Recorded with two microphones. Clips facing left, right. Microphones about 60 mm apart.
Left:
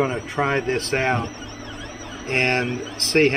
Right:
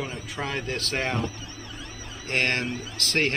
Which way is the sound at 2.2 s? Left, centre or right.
Left.